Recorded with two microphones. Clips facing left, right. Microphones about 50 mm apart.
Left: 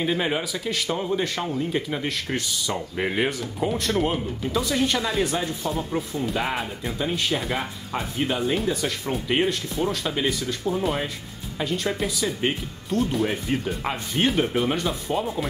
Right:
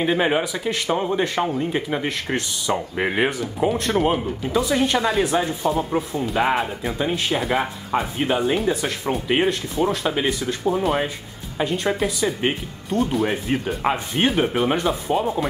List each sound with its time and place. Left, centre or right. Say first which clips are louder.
0.0 s speech: right 5 dB; centre
2.7 s speech: right 5 dB; centre
3.3 s speech: right 4 dB; centre
4.9 s speech: right 5 dB; centre
5.2 s speech: right 5 dB; centre
6.3 s speech: right 10 dB; centre